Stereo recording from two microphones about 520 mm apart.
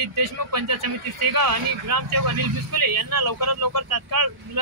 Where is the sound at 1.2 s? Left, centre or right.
Right.